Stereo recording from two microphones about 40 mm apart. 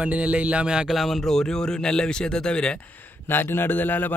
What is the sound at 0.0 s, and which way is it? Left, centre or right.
Speech, right.